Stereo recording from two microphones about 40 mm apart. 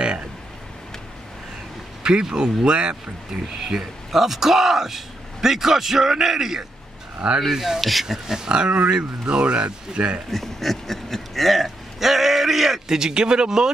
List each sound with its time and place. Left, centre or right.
2.0 s speech: centre
3.5 s a man's voice: centre
7.8 s speech: centre
8.5 s speech: right
10.3 s speech: centre